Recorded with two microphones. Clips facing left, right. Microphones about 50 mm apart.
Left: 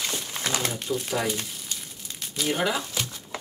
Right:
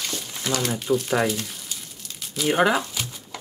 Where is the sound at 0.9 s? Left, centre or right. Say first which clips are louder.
Right 8 dB; right.